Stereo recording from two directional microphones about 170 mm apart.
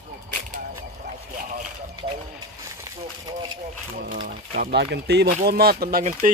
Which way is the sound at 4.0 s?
55° right (ahead or behind).